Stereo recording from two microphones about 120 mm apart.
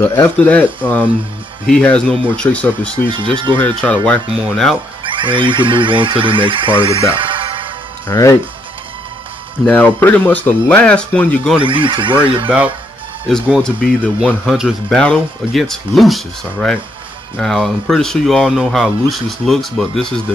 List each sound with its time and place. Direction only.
0.0 s speech: 20° left (ahead or behind)
1.7 s speech: 10° left (ahead or behind)
3.1 s speech: 45° right (ahead or behind)
3.8 s speech: 10° left (ahead or behind)
5.0 s speech: 45° right (ahead or behind)
6.9 s speech: 25° left (ahead or behind)
7.2 s music: 45° right (ahead or behind)
8.1 s speech: 25° left (ahead or behind)
9.7 s speech: 15° left (ahead or behind)
11.6 s speech: 45° right (ahead or behind)
12.4 s speech: 10° right (ahead or behind)
13.6 s speech: 10° left (ahead or behind)